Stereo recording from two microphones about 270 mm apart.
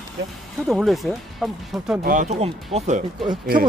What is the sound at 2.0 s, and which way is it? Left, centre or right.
Speech, right.